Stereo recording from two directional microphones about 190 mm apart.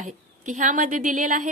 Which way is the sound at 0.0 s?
40° right (ahead or behind).